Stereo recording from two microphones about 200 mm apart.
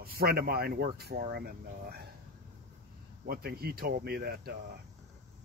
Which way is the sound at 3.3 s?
50° right (ahead or behind).